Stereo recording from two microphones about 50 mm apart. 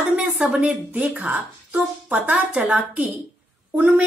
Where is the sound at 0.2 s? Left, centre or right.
Centre.